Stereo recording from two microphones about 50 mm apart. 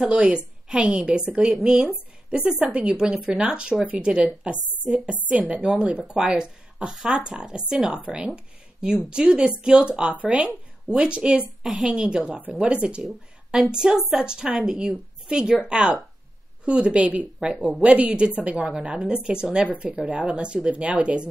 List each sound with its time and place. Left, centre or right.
0.0 s a woman's voice: right
6.0 s a woman's voice: centre
19.7 s a woman's voice: right